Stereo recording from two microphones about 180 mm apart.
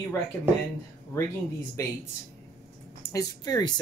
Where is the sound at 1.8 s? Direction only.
15° left (ahead or behind).